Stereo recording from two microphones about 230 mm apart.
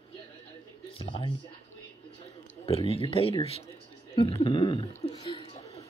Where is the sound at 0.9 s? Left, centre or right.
Left.